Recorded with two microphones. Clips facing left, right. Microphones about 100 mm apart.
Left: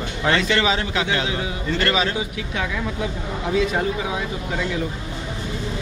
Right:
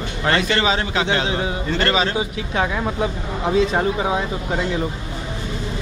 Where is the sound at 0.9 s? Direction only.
30° right (ahead or behind).